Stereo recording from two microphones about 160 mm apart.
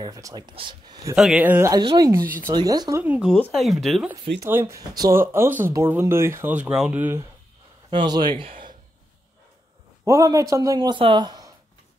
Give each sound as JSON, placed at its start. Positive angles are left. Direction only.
{"t": 0.0, "sound": "a man's voice", "side_deg": -20}
{"t": 1.1, "sound": "speech", "side_deg": -5}
{"t": 1.7, "sound": "a man's voice", "side_deg": -25}
{"t": 3.0, "sound": "speech", "side_deg": -10}
{"t": 4.4, "sound": "speech", "side_deg": -15}
{"t": 7.9, "sound": "a man's voice", "side_deg": -25}
{"t": 10.0, "sound": "a man's voice", "side_deg": -20}